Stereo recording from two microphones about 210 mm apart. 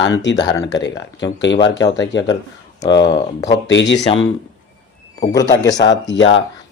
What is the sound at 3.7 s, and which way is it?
Speech, 60° left (ahead or behind).